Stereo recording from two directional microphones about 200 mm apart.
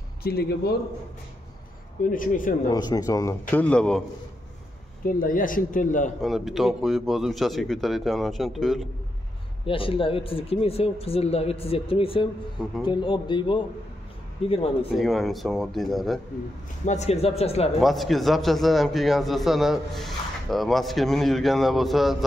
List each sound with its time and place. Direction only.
0.2 s speech: 50° left (ahead or behind)
2.0 s speech: 40° left (ahead or behind)
2.7 s speech: 20° left (ahead or behind)
3.5 s a man's voice: 5° left (ahead or behind)
5.0 s speech: 45° left (ahead or behind)
6.2 s a man's voice: centre (ahead or behind)
9.7 s speech: 25° left (ahead or behind)
15.0 s a man's voice: centre (ahead or behind)
16.8 s speech: 35° left (ahead or behind)
17.7 s a man's voice: centre (ahead or behind)